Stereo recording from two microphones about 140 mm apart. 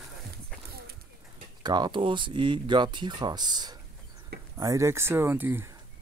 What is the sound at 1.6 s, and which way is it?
Speech, 30° right (ahead or behind).